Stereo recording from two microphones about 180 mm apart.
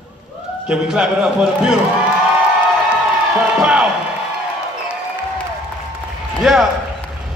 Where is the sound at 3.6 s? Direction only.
5° right (ahead or behind).